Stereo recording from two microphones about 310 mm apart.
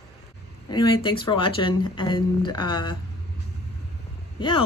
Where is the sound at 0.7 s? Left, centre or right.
Centre.